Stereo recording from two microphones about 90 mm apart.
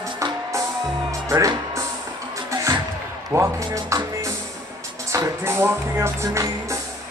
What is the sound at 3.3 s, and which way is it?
Speech, 35° right (ahead or behind).